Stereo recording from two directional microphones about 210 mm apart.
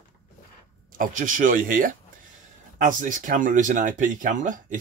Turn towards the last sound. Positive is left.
turn(degrees=-40)  # may be behind; listen again after turning